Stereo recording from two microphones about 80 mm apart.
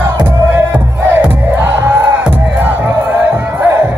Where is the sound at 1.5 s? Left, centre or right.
Right.